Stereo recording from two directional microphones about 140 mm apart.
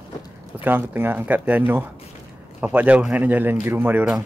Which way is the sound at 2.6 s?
10° right (ahead or behind).